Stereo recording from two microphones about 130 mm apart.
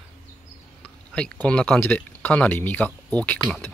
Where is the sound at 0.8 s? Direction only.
5° left (ahead or behind).